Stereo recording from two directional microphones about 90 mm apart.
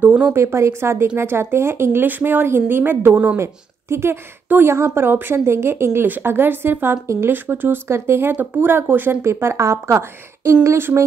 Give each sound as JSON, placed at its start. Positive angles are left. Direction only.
{"t": 0.0, "sound": "a woman's voice", "side_deg": -20}
{"t": 0.4, "sound": "a woman's voice", "side_deg": -30}